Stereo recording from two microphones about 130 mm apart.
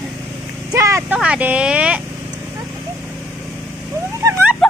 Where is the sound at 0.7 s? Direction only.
25° right (ahead or behind).